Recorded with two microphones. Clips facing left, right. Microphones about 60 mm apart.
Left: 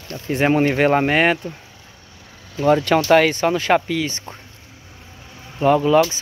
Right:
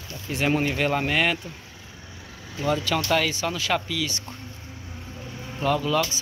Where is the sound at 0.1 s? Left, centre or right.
Left.